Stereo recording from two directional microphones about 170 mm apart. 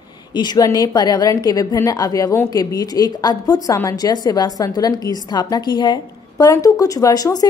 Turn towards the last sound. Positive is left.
turn(degrees=20)  # may be behind; listen again after turning